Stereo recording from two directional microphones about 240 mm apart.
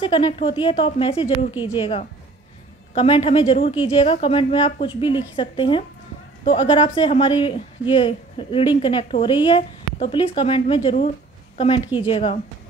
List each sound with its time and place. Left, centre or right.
0.0 s speech: left